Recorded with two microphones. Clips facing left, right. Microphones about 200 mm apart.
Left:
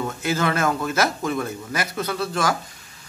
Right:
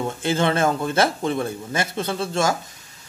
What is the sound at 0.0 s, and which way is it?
A man's voice, 30° right (ahead or behind).